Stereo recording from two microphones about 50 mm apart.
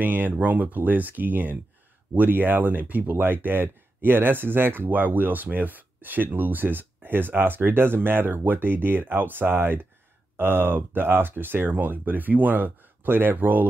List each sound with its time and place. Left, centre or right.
0.0 s speech: right